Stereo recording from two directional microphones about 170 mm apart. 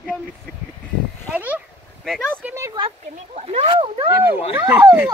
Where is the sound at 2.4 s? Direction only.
15° right (ahead or behind).